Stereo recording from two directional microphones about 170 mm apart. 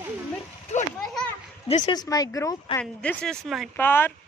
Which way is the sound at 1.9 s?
20° left (ahead or behind).